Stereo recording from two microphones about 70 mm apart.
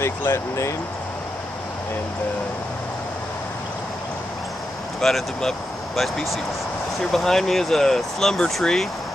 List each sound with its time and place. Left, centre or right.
0.0 s speech: left
5.0 s speech: centre